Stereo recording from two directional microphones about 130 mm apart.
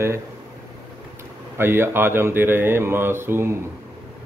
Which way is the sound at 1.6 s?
20° right (ahead or behind).